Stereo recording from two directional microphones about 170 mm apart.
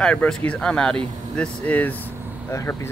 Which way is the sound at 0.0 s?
5° left (ahead or behind).